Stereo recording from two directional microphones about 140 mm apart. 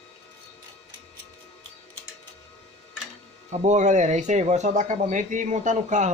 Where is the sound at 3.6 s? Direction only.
60° right (ahead or behind).